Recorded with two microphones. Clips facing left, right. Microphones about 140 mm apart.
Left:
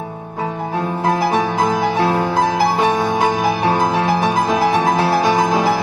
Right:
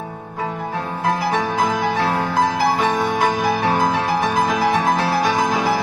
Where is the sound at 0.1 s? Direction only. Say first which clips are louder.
Left 2 dB; 25° left (ahead or behind).